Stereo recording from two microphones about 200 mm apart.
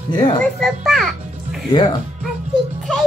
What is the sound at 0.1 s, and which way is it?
Speech, 20° left (ahead or behind).